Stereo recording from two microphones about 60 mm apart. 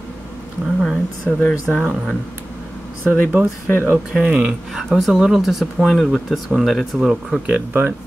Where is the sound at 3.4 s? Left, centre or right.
Right.